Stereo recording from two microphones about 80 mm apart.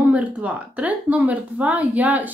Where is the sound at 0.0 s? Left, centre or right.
Centre.